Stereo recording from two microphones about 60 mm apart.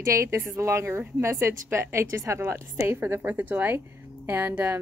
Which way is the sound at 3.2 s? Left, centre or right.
Right.